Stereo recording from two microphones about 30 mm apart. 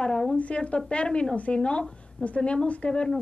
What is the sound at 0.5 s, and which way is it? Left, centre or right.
A woman's voice, left.